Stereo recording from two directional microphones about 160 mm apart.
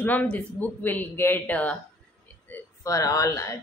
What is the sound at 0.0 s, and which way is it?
A woman's voice, 10° left (ahead or behind).